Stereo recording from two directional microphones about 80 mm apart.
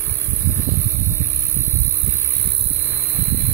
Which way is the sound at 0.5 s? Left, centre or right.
Left.